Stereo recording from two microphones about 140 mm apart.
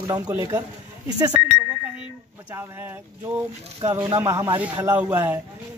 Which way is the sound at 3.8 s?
25° right (ahead or behind).